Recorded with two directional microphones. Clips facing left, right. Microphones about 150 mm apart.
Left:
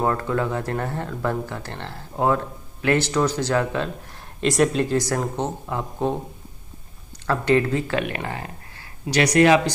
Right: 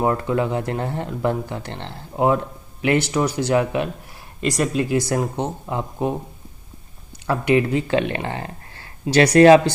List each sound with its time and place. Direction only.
0.0 s speech: 15° right (ahead or behind)
4.4 s speech: centre (ahead or behind)
5.1 s speech: 15° right (ahead or behind)
7.2 s speech: 15° right (ahead or behind); by 9.6 s 30° right (ahead or behind)